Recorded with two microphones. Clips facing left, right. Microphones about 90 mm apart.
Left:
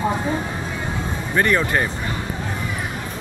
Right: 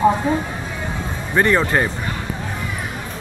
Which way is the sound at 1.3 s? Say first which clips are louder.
Right 3 dB; 20° right (ahead or behind).